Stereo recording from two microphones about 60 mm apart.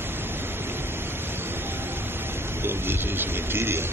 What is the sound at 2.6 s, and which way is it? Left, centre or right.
Speech, right.